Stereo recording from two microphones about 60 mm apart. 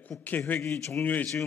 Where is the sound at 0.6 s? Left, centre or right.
Left.